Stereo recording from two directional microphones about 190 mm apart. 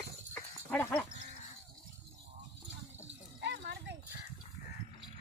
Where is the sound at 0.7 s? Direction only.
10° left (ahead or behind).